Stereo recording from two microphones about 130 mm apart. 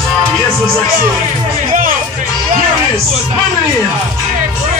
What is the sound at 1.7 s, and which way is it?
Music, 90° right.